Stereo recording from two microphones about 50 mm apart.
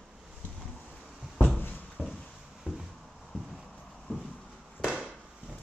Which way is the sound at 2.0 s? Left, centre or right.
Centre.